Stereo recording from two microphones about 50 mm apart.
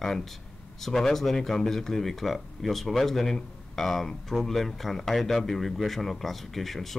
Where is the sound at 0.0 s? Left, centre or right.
Centre.